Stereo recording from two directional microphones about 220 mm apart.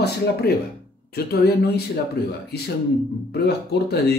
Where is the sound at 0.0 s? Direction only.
45° left (ahead or behind).